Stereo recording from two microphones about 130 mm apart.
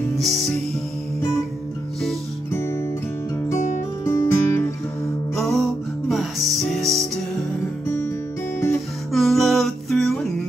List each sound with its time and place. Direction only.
0.2 s music: centre (ahead or behind)
2.5 s music: 20° left (ahead or behind)
4.0 s music: 20° left (ahead or behind)
5.3 s music: centre (ahead or behind)
7.8 s music: 20° left (ahead or behind)
9.1 s music: centre (ahead or behind)